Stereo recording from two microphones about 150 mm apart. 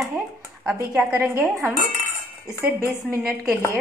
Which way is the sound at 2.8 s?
20° right (ahead or behind).